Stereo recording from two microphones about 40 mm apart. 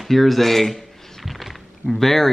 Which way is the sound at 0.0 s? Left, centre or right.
Centre.